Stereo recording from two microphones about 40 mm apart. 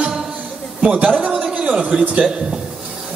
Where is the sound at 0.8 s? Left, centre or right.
Right.